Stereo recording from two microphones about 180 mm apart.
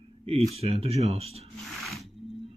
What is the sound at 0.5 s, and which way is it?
Speech, 35° right (ahead or behind).